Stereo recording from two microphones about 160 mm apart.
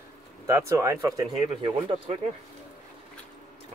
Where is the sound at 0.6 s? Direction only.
15° right (ahead or behind).